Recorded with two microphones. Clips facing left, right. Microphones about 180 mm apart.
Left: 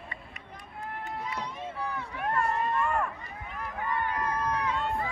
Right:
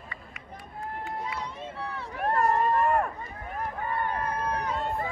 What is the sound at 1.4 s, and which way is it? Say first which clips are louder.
Run: left 1 dB; 30° right (ahead or behind).